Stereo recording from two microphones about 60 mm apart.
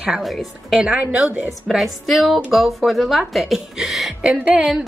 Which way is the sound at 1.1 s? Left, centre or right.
Right.